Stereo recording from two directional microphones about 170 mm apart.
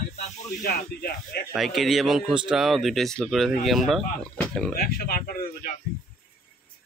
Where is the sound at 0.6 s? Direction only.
65° left (ahead or behind).